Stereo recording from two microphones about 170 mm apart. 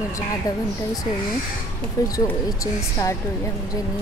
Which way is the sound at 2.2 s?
20° left (ahead or behind).